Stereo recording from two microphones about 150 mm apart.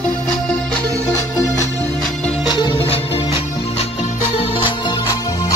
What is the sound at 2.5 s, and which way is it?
Music, 30° left (ahead or behind).